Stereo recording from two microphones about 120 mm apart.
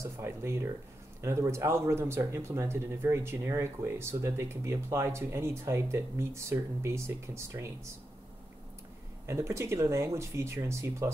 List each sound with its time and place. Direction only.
0.0 s speech: 20° right (ahead or behind)
9.2 s speech: 25° right (ahead or behind)